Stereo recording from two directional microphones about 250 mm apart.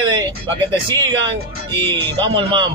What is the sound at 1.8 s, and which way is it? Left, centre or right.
Speech, centre.